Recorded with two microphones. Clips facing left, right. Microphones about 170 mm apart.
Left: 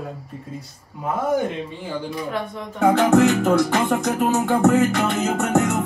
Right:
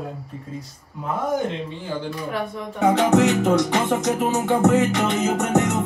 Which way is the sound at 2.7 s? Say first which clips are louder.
Left 2 dB; centre (ahead or behind).